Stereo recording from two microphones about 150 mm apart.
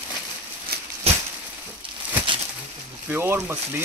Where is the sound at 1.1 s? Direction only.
45° right (ahead or behind).